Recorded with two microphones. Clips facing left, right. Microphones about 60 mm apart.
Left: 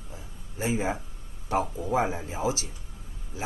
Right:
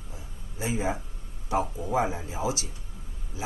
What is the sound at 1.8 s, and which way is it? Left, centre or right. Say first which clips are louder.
Speech: left 1 dB; left.